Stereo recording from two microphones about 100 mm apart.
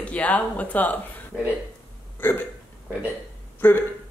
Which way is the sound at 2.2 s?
20° left (ahead or behind).